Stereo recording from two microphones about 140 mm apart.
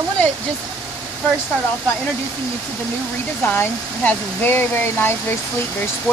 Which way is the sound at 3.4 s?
10° left (ahead or behind).